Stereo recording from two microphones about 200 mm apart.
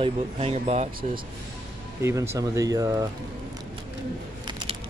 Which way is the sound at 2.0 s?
15° right (ahead or behind).